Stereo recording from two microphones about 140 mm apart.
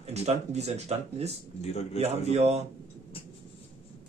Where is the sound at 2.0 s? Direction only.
50° right (ahead or behind).